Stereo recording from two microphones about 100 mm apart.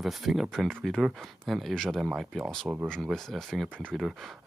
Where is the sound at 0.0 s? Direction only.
Centre (ahead or behind).